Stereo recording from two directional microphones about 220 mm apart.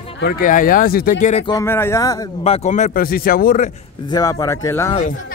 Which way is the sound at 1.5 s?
10° left (ahead or behind).